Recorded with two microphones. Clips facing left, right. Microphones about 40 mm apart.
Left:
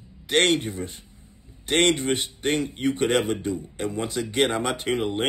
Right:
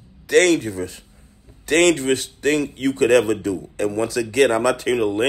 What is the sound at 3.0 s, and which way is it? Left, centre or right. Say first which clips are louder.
Speech: right 9 dB; right.